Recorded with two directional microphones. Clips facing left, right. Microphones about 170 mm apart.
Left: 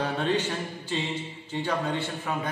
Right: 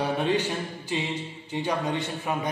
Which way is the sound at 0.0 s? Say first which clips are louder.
Right 2 dB; 10° right (ahead or behind).